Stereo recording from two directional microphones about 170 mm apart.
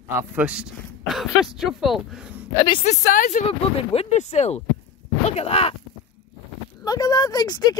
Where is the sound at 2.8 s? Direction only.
45° left (ahead or behind).